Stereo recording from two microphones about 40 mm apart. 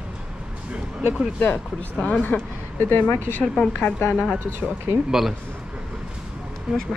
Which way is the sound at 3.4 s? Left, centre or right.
Left.